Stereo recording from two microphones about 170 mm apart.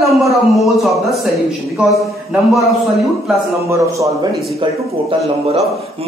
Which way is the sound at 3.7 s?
20° right (ahead or behind).